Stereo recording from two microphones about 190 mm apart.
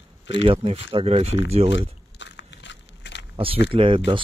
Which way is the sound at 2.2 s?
70° left (ahead or behind).